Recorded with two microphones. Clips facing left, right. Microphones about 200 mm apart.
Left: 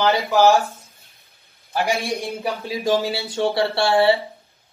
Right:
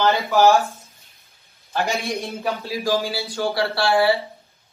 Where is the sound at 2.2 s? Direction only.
15° left (ahead or behind).